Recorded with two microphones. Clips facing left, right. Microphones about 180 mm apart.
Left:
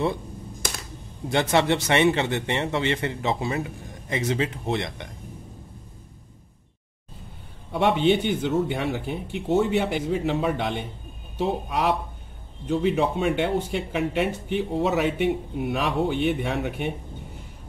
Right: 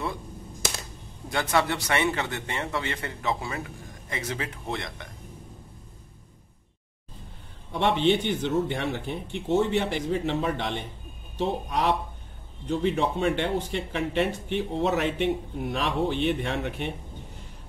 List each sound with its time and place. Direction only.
1.3 s a man's voice: 25° left (ahead or behind)
7.7 s speech: 5° left (ahead or behind)